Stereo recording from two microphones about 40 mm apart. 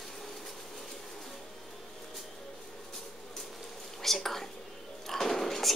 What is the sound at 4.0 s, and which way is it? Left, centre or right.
Whispering, centre.